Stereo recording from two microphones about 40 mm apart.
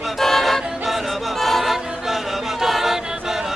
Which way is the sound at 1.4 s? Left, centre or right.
Centre.